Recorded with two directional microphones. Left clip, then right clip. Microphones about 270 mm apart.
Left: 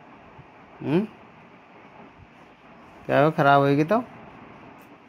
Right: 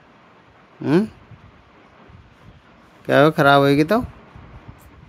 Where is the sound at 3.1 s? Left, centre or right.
Right.